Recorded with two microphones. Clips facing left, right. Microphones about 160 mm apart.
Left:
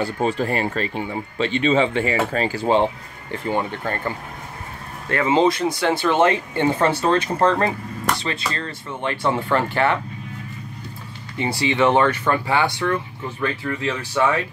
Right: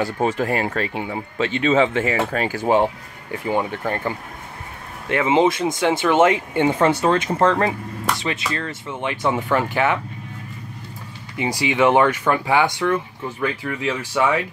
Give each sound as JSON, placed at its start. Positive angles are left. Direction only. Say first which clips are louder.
{"t": 0.0, "sound": "speech", "louder": "right 1 dB", "side_deg": -15}
{"t": 11.3, "sound": "speech", "louder": "even", "side_deg": -15}